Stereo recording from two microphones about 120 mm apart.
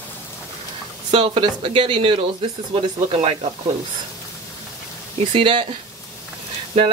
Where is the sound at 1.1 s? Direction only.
50° right (ahead or behind).